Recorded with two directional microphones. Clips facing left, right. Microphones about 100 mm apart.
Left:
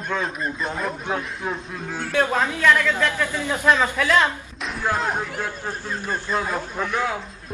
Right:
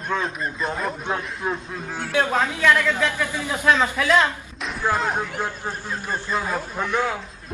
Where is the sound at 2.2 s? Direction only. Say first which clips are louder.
Even; 15° right (ahead or behind).